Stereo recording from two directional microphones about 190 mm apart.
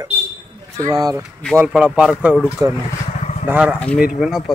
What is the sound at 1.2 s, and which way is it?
Speech, centre (ahead or behind).